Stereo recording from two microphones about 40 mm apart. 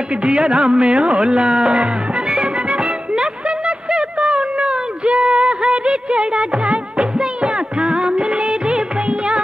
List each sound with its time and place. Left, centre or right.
0.2 s music: right
7.0 s music of bollywood: right